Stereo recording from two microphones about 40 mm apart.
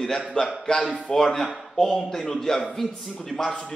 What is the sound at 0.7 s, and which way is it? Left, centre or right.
Speech, centre.